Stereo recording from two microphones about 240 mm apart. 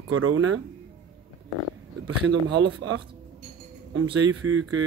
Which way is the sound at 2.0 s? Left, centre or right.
Right.